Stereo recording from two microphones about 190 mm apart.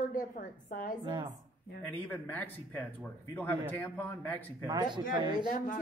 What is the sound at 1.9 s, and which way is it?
Speech, 10° left (ahead or behind).